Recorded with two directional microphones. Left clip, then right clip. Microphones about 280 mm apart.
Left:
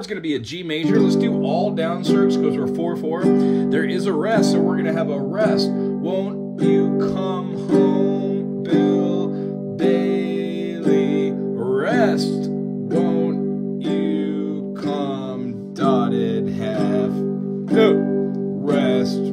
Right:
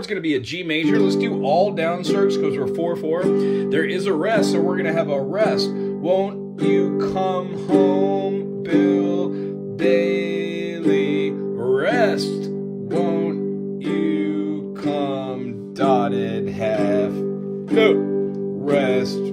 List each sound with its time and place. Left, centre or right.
0.8 s speech: centre
6.7 s speech: centre
7.8 s music: centre
9.8 s speech: centre
10.9 s music: centre
15.8 s music: centre
17.6 s music: centre
18.7 s music: centre